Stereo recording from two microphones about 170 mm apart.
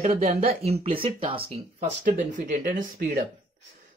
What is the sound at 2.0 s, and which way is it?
Speech, 50° right (ahead or behind).